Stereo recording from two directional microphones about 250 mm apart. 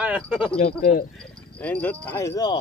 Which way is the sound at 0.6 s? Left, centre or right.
Left.